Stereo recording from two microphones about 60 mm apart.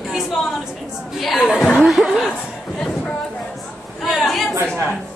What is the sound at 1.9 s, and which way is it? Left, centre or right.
Snicker, centre.